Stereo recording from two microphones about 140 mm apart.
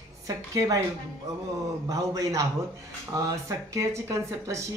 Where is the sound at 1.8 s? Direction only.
25° right (ahead or behind).